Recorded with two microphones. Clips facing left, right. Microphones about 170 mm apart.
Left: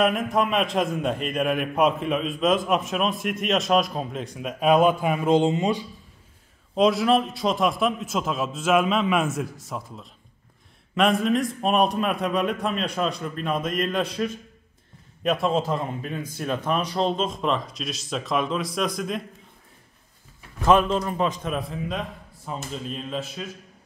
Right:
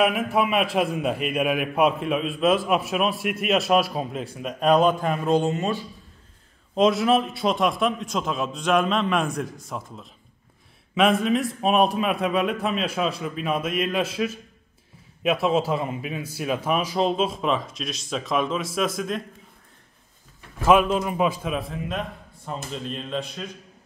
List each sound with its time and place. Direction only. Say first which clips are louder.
0.0 s a man's voice: even; 5° right (ahead or behind)
5.2 s speech: left 3 dB; 20° left (ahead or behind)
6.7 s a man's voice: even; centre (ahead or behind)
20.5 s a man's voice: right 1 dB; 5° right (ahead or behind)